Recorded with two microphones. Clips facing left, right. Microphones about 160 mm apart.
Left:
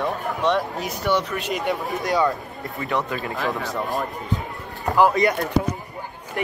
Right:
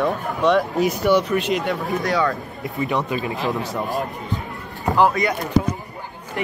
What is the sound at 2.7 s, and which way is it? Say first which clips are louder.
Speech: right 3 dB; 15° right (ahead or behind).